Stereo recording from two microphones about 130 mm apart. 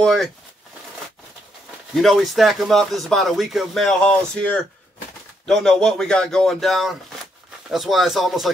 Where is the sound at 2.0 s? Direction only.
Centre (ahead or behind).